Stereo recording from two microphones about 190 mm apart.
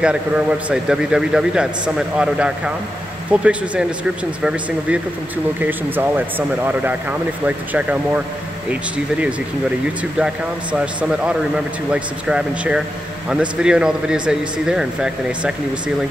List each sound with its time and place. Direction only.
0.0 s a man's voice: 5° right (ahead or behind)